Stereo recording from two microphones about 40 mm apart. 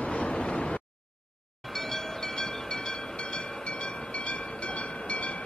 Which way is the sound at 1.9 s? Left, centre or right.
Centre.